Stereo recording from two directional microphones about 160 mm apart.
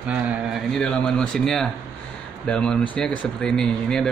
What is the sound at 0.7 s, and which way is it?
Speech, 5° left (ahead or behind).